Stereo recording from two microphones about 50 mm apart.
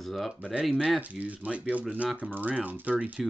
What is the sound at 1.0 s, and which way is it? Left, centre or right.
Speech, right.